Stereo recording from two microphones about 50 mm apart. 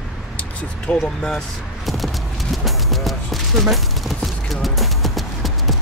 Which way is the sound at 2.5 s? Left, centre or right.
Centre.